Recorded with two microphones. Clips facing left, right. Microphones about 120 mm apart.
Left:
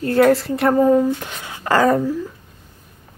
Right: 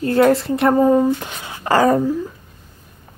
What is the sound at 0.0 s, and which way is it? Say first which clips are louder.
Speech: even; 25° right (ahead or behind).